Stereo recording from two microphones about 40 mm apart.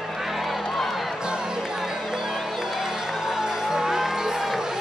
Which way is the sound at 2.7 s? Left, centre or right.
Centre.